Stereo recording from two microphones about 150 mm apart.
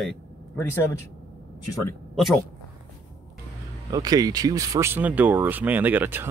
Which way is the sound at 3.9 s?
25° right (ahead or behind).